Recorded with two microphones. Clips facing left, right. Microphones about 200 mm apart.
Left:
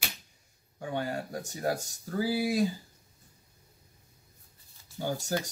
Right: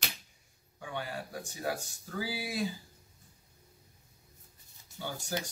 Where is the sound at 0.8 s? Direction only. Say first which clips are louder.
Left 6 dB; 40° left (ahead or behind).